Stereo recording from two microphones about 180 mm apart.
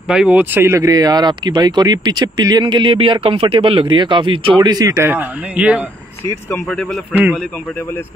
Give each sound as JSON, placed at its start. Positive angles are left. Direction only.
{"t": 0.1, "sound": "speech", "side_deg": -5}
{"t": 6.5, "sound": "speech", "side_deg": 5}
{"t": 7.1, "sound": "a man's voice", "side_deg": -5}